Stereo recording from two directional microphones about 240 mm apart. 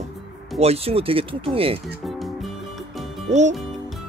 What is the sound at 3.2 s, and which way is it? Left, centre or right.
Speech, right.